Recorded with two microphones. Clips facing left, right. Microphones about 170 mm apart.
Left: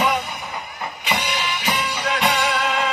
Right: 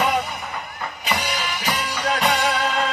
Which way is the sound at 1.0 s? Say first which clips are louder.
Left 1 dB; 40° right (ahead or behind).